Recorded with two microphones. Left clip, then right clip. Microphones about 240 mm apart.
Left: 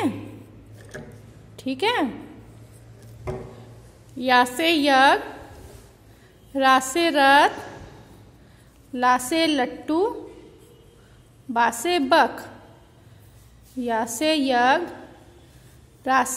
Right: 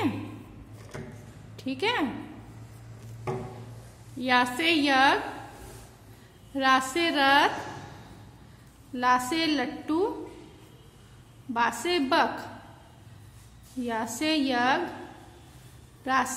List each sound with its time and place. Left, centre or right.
1.6 s a woman's voice: left
4.2 s a woman's voice: left
6.5 s a woman's voice: left
8.9 s a woman's voice: left
11.5 s a woman's voice: left
13.8 s a woman's voice: left
16.0 s a woman's voice: left